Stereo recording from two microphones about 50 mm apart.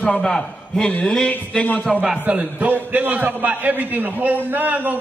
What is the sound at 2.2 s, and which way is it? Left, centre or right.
A man's voice, right.